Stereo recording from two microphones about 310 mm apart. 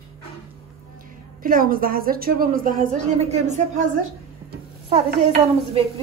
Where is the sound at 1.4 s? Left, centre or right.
Right.